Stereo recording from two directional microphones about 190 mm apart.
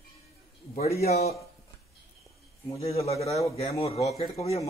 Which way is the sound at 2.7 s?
30° left (ahead or behind).